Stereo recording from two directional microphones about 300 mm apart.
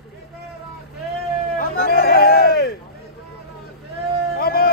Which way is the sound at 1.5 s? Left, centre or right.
Left.